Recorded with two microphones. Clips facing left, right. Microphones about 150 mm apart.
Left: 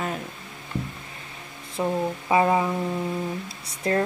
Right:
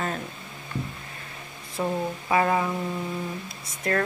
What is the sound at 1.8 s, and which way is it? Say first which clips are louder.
Speech: left 2 dB; 20° left (ahead or behind).